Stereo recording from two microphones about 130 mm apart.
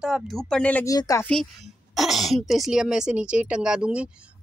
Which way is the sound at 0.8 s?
25° left (ahead or behind).